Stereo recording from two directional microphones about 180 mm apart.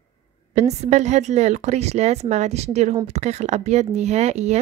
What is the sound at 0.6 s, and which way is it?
Speech, 40° right (ahead or behind).